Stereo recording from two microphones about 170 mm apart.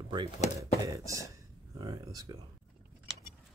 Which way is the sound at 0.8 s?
20° right (ahead or behind).